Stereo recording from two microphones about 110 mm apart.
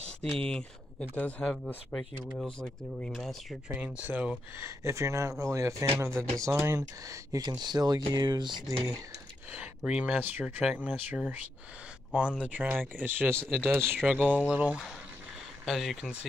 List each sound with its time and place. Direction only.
0.2 s speech: 10° left (ahead or behind)
3.6 s speech: 10° right (ahead or behind)
4.6 s speech: 25° right (ahead or behind); by 8.7 s 40° right (ahead or behind)
9.5 s speech: 10° right (ahead or behind)